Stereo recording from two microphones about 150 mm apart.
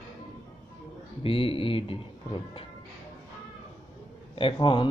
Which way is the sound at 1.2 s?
35° left (ahead or behind).